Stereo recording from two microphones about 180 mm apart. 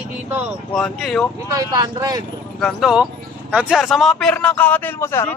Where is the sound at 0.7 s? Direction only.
5° left (ahead or behind).